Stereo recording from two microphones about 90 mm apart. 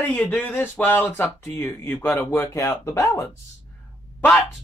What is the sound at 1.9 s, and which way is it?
Speech, 25° left (ahead or behind).